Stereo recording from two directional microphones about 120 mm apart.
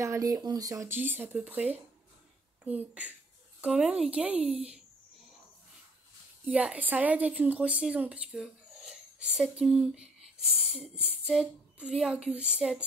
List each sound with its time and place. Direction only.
0.0 s speech: 30° right (ahead or behind)
0.9 s speech: 15° right (ahead or behind)
6.4 s a woman's voice: 10° right (ahead or behind)